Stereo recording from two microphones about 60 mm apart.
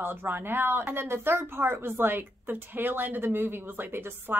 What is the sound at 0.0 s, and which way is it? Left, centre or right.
Speech, right.